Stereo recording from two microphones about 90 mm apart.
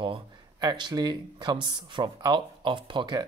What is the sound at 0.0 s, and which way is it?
Speech, 60° right (ahead or behind).